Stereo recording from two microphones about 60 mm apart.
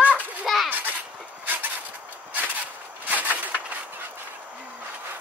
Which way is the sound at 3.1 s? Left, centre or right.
Right.